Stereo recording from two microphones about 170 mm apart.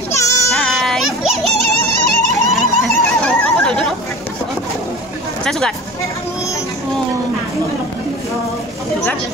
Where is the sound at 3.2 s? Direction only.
5° left (ahead or behind).